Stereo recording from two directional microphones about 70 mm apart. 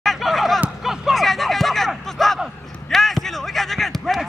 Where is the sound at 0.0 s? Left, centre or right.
Centre.